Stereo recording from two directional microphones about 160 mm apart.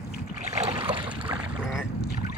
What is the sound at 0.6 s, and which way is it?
Boat, 35° right (ahead or behind).